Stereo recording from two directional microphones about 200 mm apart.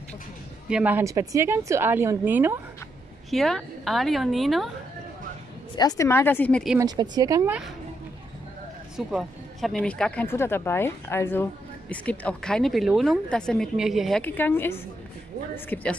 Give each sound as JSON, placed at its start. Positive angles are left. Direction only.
{"t": 0.7, "sound": "a woman's voice", "side_deg": -5}
{"t": 3.3, "sound": "a woman's voice", "side_deg": 0}
{"t": 5.8, "sound": "speech", "side_deg": 15}
{"t": 6.8, "sound": "a woman's voice", "side_deg": -20}
{"t": 8.9, "sound": "a woman's voice", "side_deg": 0}